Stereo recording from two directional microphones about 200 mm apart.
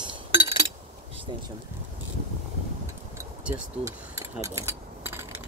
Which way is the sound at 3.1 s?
10° right (ahead or behind).